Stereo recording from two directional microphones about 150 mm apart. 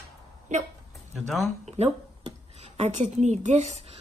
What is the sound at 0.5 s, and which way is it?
Speech, 50° right (ahead or behind).